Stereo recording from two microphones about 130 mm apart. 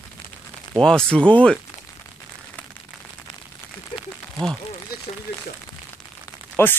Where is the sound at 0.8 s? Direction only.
5° left (ahead or behind).